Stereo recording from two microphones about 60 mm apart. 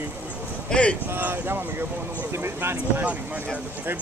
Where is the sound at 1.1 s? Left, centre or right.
Right.